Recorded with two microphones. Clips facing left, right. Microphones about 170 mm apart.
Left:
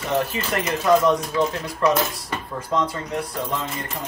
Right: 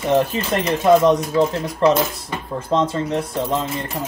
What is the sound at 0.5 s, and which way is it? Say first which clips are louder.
Speech: right 4 dB; 20° right (ahead or behind).